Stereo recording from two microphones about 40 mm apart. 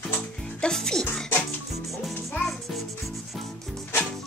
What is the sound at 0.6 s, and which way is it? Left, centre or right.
Speech, centre.